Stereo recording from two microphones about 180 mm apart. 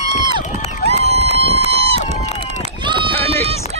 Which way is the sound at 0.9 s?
35° right (ahead or behind).